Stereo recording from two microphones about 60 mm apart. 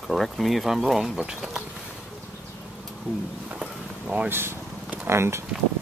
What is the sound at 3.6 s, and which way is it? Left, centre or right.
Vehicle, centre.